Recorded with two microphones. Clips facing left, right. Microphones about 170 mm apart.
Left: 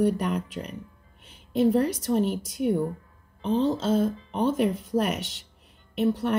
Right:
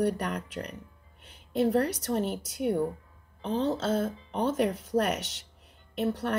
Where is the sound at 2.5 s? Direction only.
30° right (ahead or behind).